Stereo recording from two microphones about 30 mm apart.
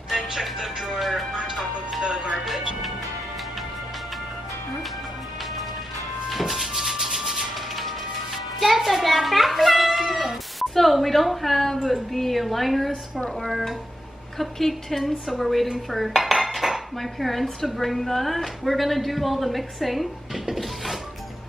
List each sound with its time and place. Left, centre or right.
0.1 s music: centre
1.0 s a woman's voice: centre
1.3 s music: right
2.0 s speech: right
6.2 s music: centre
8.7 s a child's voice: centre
15.9 s dishes: centre
17.7 s a woman's voice: centre
20.4 s mechanisms: centre